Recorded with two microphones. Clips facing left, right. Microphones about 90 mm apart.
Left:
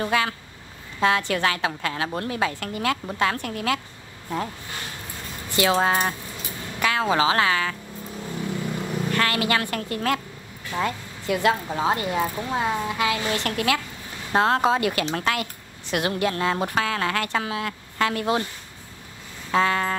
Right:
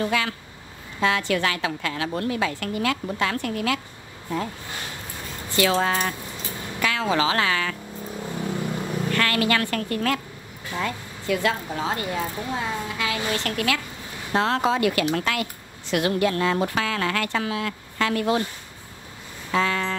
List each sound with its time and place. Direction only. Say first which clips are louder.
0.0 s speech: left 1 dB; 35° left (ahead or behind)
5.5 s speech: left 1 dB; 20° left (ahead or behind)
8.1 s vehicle: right 1 dB; 20° right (ahead or behind)
9.1 s speech: right 1 dB; 25° left (ahead or behind)
14.3 s speech: left 2 dB; 35° left (ahead or behind)
14.8 s speech: right 3 dB; 25° left (ahead or behind)
19.5 s speech: left 2 dB; 35° left (ahead or behind)